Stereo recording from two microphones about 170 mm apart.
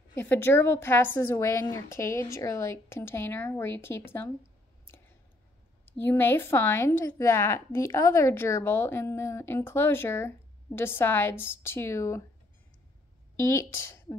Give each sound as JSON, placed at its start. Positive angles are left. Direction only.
{"t": 0.1, "sound": "a woman's voice", "side_deg": 15}
{"t": 5.9, "sound": "a woman's voice", "side_deg": 10}
{"t": 13.4, "sound": "speech", "side_deg": 15}